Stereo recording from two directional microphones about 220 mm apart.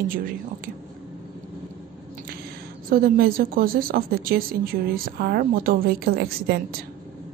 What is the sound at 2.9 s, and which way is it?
A woman's voice, 40° right (ahead or behind).